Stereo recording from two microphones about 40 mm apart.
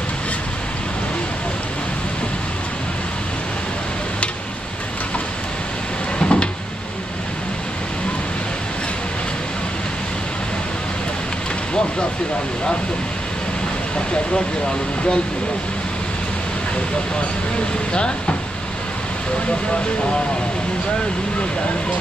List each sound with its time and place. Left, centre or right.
6.1 s cupboard open or close: left